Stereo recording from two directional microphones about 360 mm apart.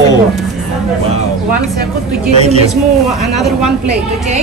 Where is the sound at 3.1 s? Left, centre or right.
Centre.